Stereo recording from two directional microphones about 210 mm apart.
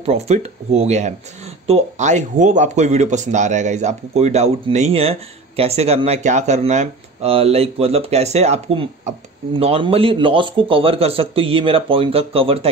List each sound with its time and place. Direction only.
0.0 s speech: 30° right (ahead or behind)